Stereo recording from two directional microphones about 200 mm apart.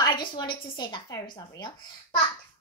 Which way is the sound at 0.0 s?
25° left (ahead or behind).